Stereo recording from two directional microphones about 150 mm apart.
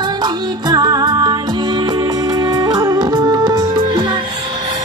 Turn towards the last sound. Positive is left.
turn(degrees=-30)  # may be behind; listen again after turning